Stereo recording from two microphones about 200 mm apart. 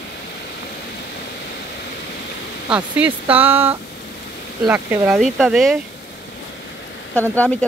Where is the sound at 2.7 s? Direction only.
5° right (ahead or behind).